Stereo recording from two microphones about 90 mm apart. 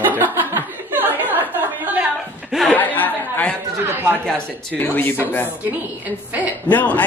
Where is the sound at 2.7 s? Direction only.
20° left (ahead or behind).